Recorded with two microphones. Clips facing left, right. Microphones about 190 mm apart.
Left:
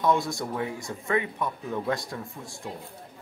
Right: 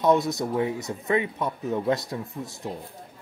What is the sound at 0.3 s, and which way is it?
Speech, 20° right (ahead or behind).